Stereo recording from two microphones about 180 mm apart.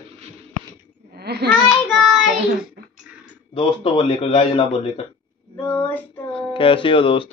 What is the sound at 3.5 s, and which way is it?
Speech, 30° left (ahead or behind).